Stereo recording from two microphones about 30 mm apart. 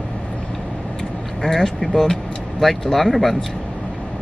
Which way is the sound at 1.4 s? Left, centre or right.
Centre.